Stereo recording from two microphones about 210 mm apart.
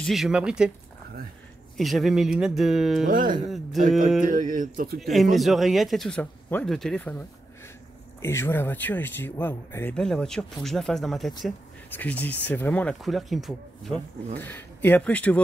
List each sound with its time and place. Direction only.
0.0 s speech: centre (ahead or behind)
1.8 s speech: centre (ahead or behind)
3.1 s speech: 40° right (ahead or behind)
5.0 s speech: centre (ahead or behind)